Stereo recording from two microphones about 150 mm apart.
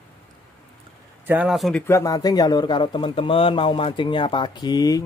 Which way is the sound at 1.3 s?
5° right (ahead or behind).